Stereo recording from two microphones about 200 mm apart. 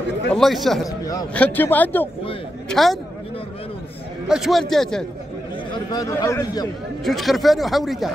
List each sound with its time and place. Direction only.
0.3 s speech: centre (ahead or behind)
0.8 s a sound: 20° left (ahead or behind)
1.3 s speech: 5° left (ahead or behind)
4.3 s speech: centre (ahead or behind)
5.9 s speech: 20° left (ahead or behind)
7.1 s speech: centre (ahead or behind)